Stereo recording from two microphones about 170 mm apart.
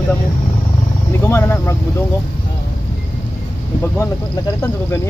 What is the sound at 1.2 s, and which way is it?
Speech, 15° left (ahead or behind).